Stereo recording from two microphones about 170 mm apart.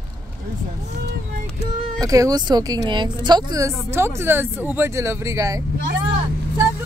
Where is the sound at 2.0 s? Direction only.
20° right (ahead or behind).